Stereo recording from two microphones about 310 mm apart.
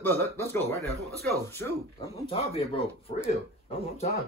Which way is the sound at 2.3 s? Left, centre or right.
Centre.